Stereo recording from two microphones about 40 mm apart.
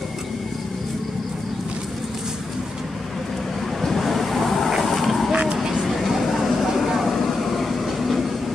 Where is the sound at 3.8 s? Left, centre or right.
Centre.